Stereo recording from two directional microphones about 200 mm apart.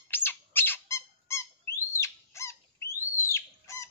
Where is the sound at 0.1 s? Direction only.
10° left (ahead or behind).